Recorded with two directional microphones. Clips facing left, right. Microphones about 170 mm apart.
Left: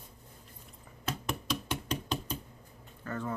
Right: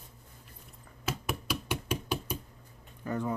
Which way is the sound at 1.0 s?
10° right (ahead or behind).